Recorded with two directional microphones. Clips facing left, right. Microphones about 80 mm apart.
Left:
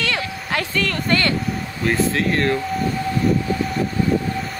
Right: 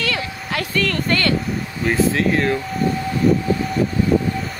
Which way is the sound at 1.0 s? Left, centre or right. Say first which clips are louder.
Even; left.